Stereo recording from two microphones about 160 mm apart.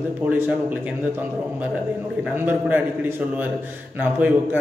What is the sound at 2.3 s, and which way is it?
A man's voice, 10° right (ahead or behind).